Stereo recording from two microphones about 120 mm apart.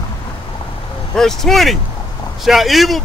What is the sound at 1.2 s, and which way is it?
Speech, 5° left (ahead or behind).